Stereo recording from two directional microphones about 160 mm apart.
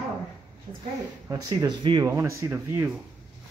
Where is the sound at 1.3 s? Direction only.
25° right (ahead or behind).